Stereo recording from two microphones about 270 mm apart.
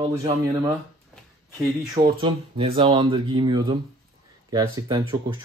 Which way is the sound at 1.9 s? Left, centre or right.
Centre.